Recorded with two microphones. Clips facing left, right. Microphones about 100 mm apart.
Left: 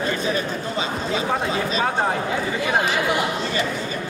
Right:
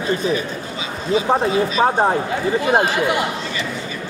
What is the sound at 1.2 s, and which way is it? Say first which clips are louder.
Speech: right 7 dB; 30° right (ahead or behind).